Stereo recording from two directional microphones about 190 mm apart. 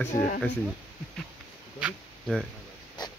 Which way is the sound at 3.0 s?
20° left (ahead or behind).